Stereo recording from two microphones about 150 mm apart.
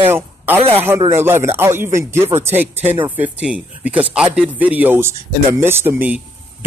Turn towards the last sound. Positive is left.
turn(degrees=-10)  # may be behind; listen again after turning